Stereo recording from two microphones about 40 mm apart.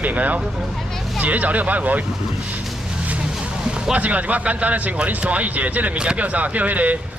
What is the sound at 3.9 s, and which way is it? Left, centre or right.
Speech, right.